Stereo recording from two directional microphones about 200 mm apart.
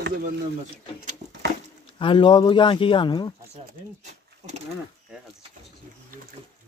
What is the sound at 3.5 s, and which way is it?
Pigeon, 35° right (ahead or behind).